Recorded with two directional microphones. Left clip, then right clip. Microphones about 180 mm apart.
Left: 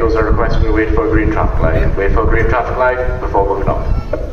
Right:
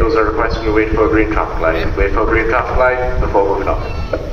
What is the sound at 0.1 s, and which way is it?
A man's voice, 45° left (ahead or behind).